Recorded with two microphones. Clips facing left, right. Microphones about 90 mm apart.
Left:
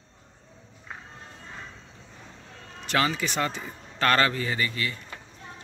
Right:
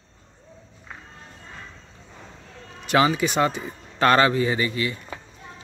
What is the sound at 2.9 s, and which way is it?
A man's voice, 15° right (ahead or behind).